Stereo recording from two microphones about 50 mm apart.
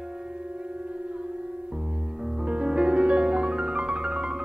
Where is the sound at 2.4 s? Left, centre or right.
Right.